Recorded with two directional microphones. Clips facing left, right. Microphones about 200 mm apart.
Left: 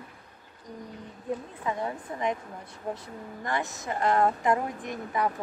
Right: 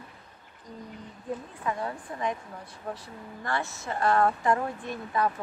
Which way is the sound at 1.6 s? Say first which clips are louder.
Left 1 dB; 20° left (ahead or behind).